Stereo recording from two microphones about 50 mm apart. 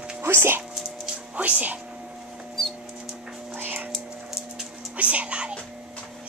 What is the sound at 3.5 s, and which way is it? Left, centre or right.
Whispering, right.